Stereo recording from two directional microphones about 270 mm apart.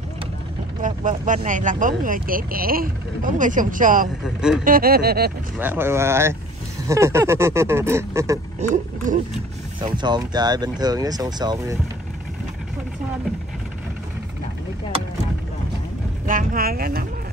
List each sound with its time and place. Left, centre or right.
0.8 s speech: right
4.2 s speech: centre
4.6 s speech: right
5.6 s speech: centre
8.5 s speech: right
9.8 s speech: centre
16.3 s speech: right